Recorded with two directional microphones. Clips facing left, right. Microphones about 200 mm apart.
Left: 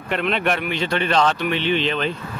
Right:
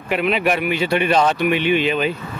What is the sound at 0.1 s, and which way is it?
Speech, 5° right (ahead or behind).